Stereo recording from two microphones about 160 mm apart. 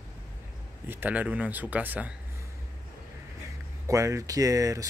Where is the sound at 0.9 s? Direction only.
10° right (ahead or behind).